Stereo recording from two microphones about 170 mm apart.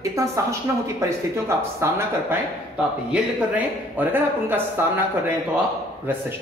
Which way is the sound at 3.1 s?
10° right (ahead or behind).